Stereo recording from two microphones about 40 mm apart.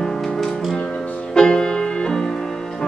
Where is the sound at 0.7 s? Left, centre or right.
Left.